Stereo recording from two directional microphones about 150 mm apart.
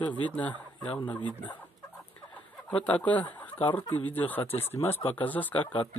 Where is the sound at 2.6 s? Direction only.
10° left (ahead or behind).